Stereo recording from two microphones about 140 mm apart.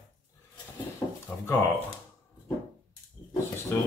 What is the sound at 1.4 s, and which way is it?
Speech, 15° left (ahead or behind).